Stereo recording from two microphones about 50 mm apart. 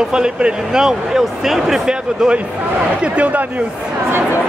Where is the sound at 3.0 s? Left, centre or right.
Right.